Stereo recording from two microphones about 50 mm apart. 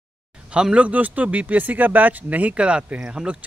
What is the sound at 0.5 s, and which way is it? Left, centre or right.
Speech, centre.